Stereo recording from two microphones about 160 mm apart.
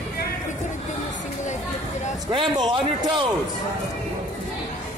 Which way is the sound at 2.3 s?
30° right (ahead or behind).